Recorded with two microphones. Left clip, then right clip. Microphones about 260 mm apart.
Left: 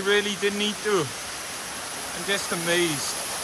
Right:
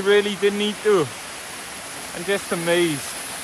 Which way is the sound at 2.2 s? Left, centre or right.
Centre.